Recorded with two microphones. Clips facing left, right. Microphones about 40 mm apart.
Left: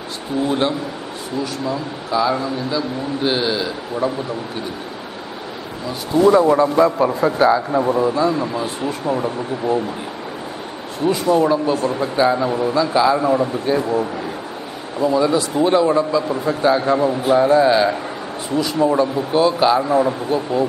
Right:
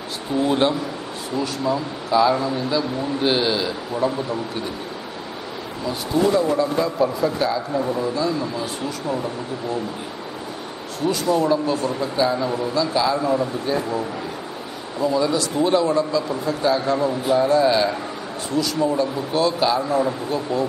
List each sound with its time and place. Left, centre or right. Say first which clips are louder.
0.4 s a man's voice: even; centre
6.2 s speech: left 7 dB; left
6.6 s a man's voice: left 5 dB; left
11.4 s a man's voice: left 3 dB; centre